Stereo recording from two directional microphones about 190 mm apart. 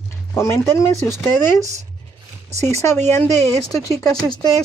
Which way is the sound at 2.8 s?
10° left (ahead or behind).